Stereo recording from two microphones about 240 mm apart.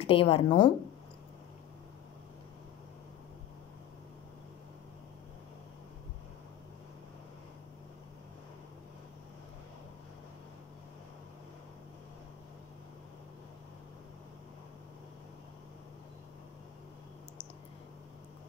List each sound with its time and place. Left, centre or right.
0.0 s a woman's voice: left